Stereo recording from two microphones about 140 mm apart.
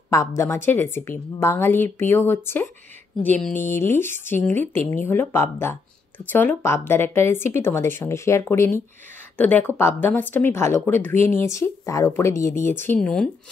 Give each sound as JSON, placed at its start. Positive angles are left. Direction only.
{"t": 0.7, "sound": "speech", "side_deg": 15}